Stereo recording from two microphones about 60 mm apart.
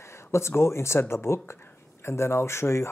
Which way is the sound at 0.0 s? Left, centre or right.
Left.